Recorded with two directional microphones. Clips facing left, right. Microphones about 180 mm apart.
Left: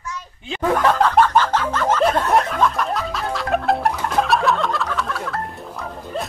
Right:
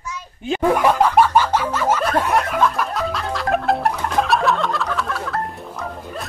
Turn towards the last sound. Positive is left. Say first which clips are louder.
# right 1 dB
turn(degrees=0)  # may be behind; listen again after turning